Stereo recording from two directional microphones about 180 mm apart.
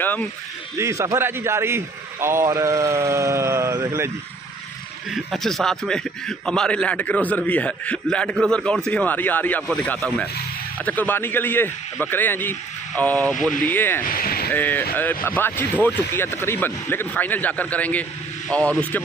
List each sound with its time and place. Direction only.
0.0 s speech: 10° left (ahead or behind)
0.7 s a man's voice: 15° right (ahead or behind)
5.1 s a man's voice: centre (ahead or behind)
14.0 s speech: 55° left (ahead or behind)
14.5 s a man's voice: 10° left (ahead or behind)